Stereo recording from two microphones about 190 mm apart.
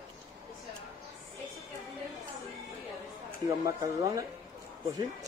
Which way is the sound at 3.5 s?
15° right (ahead or behind).